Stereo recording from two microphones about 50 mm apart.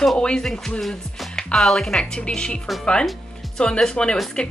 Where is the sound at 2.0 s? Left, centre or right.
Centre.